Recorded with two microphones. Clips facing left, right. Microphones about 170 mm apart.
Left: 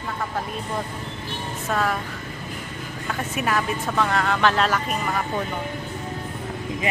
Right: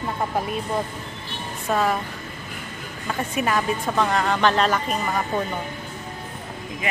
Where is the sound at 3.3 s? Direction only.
Centre (ahead or behind).